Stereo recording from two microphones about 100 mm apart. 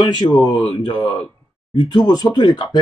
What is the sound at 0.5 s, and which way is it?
Speech, 60° left (ahead or behind).